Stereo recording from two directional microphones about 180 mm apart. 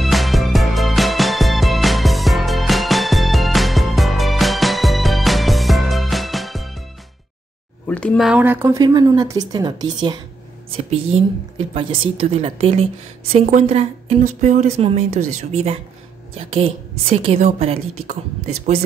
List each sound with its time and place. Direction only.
0.0 s music: centre (ahead or behind)
7.8 s speech: 10° left (ahead or behind)
8.3 s speech: 10° right (ahead or behind); by 18.1 s 35° right (ahead or behind)